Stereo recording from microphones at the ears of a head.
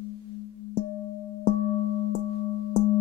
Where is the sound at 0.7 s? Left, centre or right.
Left.